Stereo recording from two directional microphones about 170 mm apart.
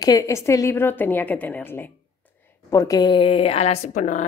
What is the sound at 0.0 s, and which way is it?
A woman's voice, 20° left (ahead or behind).